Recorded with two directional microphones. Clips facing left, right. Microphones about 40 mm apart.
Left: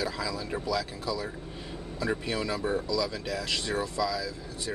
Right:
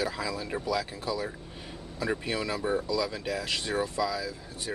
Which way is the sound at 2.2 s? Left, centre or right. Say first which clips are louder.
Even; centre.